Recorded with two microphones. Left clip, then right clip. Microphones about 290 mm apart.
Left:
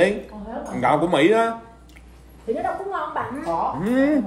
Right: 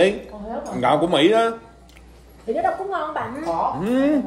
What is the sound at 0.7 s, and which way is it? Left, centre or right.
Speech, centre.